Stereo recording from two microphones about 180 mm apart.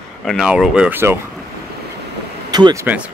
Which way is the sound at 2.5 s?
20° right (ahead or behind).